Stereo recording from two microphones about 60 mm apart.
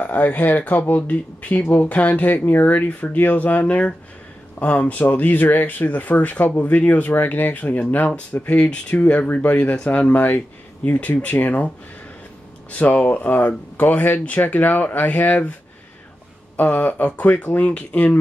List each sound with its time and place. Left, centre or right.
0.0 s speech: left
12.7 s speech: left
16.5 s speech: left